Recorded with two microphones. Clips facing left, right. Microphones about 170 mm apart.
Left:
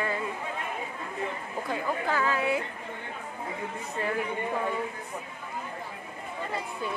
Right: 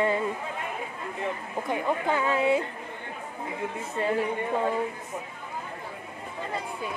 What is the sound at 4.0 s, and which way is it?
Speech, 25° right (ahead or behind).